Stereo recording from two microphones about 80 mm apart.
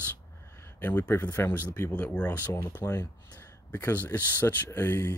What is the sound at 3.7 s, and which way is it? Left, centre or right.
Speech, left.